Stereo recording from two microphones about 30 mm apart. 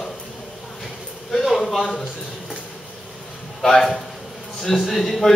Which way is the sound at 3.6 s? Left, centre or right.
Centre.